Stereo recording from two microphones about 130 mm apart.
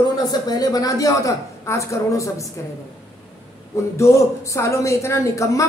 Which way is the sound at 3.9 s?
20° left (ahead or behind).